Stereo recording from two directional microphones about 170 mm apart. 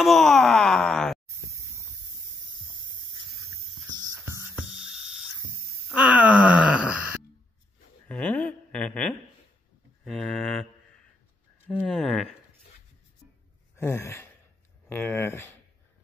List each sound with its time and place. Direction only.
0.0 s groan: centre (ahead or behind)
3.7 s music: 25° right (ahead or behind)
4.6 s music: 5° right (ahead or behind)
5.9 s wail: 10° right (ahead or behind)
8.1 s a sound: 5° left (ahead or behind)
11.7 s speech: 5° left (ahead or behind)
13.7 s sigh: 15° left (ahead or behind)
14.9 s speech: 15° left (ahead or behind)